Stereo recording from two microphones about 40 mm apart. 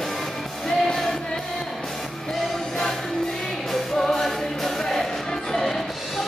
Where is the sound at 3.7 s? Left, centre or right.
Centre.